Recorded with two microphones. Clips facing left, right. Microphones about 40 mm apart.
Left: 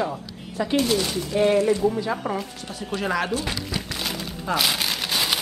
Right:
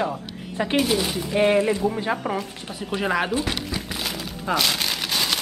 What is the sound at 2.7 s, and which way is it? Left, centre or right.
Speech, centre.